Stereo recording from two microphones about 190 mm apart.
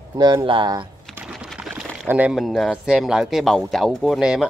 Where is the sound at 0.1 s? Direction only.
20° right (ahead or behind).